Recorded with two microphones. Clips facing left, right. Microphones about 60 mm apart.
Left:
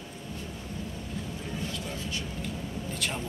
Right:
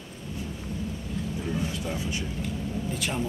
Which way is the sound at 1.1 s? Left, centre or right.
Centre.